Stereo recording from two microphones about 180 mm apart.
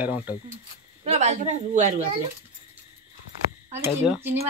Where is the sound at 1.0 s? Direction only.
40° right (ahead or behind).